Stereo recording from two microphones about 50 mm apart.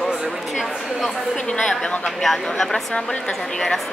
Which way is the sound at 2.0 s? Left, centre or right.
Centre.